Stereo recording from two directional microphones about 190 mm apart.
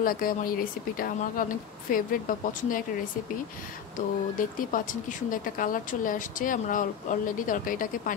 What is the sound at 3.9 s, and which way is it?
Speech, 45° left (ahead or behind).